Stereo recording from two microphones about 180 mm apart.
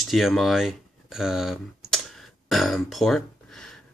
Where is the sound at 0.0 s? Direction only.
Centre (ahead or behind).